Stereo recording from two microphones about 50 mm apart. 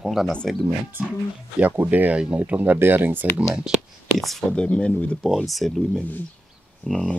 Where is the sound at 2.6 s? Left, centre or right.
Right.